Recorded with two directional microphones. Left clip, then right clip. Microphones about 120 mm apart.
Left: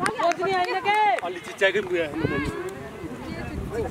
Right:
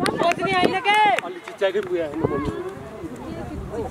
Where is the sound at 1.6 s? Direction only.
35° left (ahead or behind).